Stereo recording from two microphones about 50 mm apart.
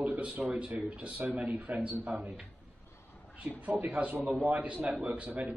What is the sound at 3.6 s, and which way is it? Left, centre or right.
A man's voice, right.